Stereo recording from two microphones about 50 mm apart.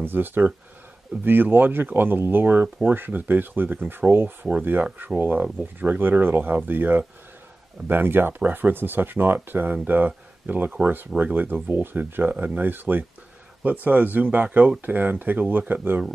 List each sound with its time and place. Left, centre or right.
0.0 s speech: right
8.4 s speech: right